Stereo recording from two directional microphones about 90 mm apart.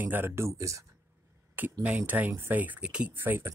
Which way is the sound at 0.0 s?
25° right (ahead or behind).